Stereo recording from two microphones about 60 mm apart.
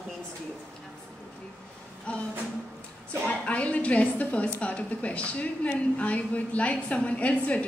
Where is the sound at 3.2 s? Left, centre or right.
Left.